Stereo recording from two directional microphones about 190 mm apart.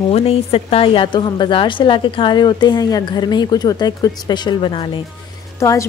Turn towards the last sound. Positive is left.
turn(degrees=15)  # may be behind; listen again after turning